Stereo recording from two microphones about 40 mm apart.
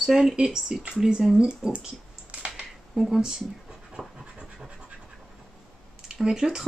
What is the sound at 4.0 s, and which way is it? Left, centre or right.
Pant, centre.